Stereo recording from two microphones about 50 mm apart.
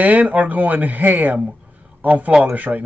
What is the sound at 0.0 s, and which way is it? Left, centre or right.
Speech, right.